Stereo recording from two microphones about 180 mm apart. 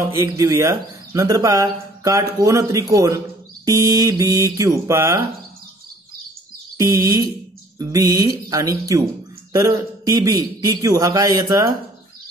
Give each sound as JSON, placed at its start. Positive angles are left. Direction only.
{"t": 0.0, "sound": "a man's voice", "side_deg": -15}
{"t": 6.8, "sound": "a man's voice", "side_deg": -15}